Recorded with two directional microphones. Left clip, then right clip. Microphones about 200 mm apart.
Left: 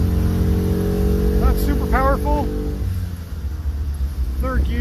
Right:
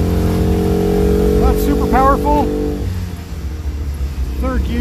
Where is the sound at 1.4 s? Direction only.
10° right (ahead or behind).